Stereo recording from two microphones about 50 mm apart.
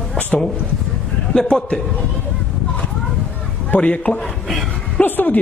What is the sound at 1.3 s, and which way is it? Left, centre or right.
Speech, centre.